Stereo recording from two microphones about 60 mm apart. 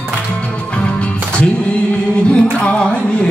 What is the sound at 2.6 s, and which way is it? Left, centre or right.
Music, centre.